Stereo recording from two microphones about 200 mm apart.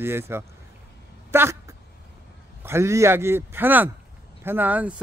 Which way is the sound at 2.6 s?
15° right (ahead or behind).